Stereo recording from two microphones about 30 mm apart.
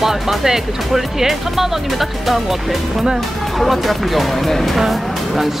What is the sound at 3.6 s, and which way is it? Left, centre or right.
Speech, centre.